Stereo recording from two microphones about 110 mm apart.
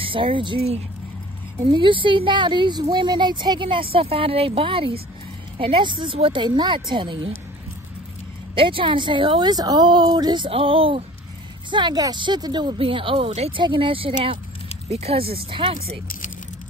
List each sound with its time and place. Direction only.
0.0 s speech: 50° right (ahead or behind)
1.7 s speech: 50° right (ahead or behind)
8.5 s speech: 50° right (ahead or behind)
9.5 s speech: 40° right (ahead or behind); by 11.1 s 55° right (ahead or behind)
11.7 s speech: 40° right (ahead or behind)
12.8 s speech: 55° right (ahead or behind)
13.6 s speech: 50° right (ahead or behind); by 16.0 s 65° right (ahead or behind)